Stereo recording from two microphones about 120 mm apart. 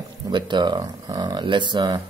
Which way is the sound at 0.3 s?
40° right (ahead or behind).